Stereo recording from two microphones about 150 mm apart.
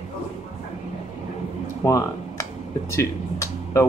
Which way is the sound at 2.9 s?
20° left (ahead or behind).